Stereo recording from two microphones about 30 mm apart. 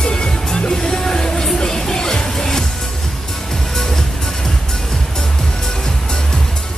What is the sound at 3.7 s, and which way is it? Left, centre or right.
Music, centre.